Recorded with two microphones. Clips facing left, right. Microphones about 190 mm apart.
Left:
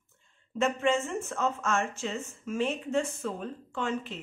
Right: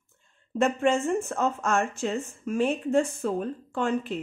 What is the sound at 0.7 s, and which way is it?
Speech, 50° right (ahead or behind).